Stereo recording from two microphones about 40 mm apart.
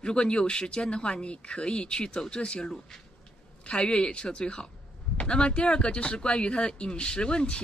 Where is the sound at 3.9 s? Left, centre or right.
Left.